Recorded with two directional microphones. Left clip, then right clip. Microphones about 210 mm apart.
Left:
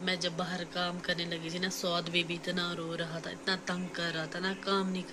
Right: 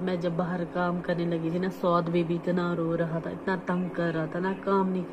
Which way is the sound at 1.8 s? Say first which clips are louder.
Right 9 dB; 20° left (ahead or behind).